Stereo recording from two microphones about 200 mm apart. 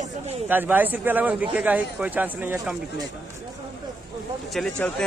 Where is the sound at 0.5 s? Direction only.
10° right (ahead or behind).